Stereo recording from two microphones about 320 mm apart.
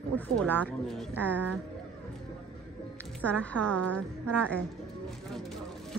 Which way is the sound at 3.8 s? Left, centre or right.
Right.